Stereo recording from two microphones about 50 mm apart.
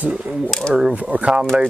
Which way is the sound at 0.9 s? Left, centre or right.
Right.